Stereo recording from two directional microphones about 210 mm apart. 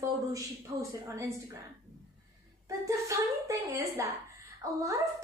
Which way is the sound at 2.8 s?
15° right (ahead or behind).